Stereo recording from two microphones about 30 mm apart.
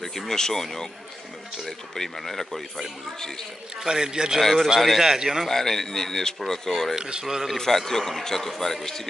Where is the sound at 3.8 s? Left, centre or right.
Right.